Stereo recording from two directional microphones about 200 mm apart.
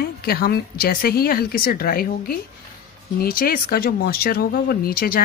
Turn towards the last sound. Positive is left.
turn(degrees=50)  # may be behind; listen again after turning